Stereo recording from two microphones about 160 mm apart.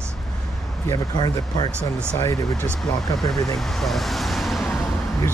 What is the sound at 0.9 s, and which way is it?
Speech, 25° left (ahead or behind).